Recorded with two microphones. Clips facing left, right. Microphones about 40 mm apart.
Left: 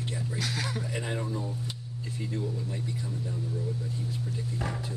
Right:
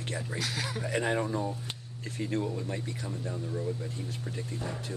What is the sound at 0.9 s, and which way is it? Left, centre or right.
Speech, right.